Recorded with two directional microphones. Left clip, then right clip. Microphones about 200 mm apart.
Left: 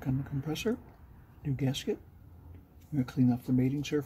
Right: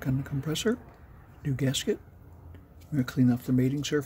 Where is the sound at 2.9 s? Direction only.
30° right (ahead or behind).